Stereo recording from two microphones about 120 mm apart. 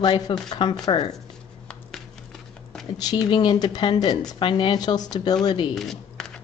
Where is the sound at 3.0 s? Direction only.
35° left (ahead or behind).